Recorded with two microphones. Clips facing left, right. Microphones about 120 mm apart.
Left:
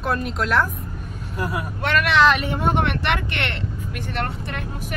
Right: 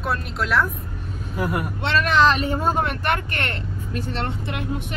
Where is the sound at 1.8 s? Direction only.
30° right (ahead or behind).